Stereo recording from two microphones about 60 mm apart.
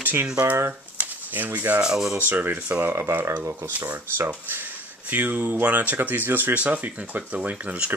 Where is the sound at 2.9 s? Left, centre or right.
Right.